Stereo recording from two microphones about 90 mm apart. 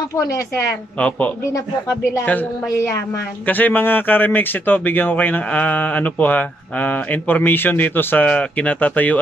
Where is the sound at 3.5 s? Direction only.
20° left (ahead or behind).